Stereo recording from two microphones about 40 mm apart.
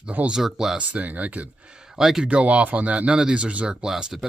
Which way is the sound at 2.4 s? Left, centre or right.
Right.